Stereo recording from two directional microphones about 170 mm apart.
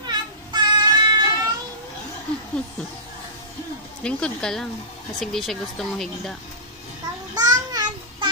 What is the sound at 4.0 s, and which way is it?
Speech, 5° left (ahead or behind).